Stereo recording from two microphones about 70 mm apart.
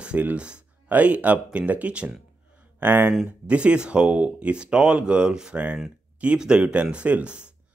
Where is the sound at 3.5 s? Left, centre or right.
Centre.